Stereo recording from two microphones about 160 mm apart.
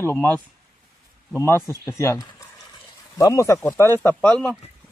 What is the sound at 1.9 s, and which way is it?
Speech, 15° left (ahead or behind).